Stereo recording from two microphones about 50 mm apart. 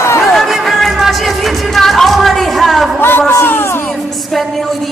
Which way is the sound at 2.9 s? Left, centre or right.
Left.